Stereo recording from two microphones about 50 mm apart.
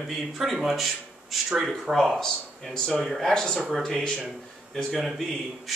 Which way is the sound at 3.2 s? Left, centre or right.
Centre.